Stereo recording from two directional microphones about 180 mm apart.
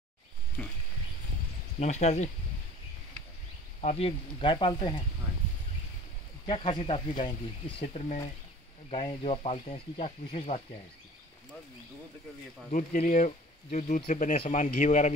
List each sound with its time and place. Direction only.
0.6 s a sound: 5° left (ahead or behind)
1.8 s speech: 40° left (ahead or behind)
3.8 s speech: 35° left (ahead or behind)
6.4 s speech: 25° left (ahead or behind)
12.7 s speech: 45° left (ahead or behind)